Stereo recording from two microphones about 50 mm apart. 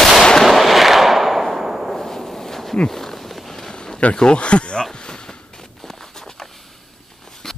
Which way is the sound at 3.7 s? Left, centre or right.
Centre.